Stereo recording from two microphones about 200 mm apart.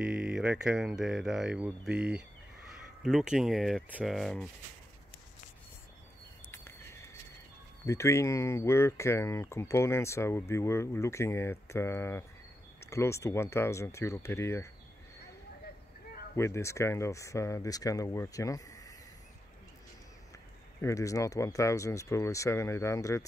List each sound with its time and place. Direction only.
0.0 s speech: 5° right (ahead or behind)
6.5 s a sound: 10° left (ahead or behind)
7.8 s speech: 15° left (ahead or behind)
16.3 s speech: 15° left (ahead or behind)
20.8 s speech: 15° left (ahead or behind)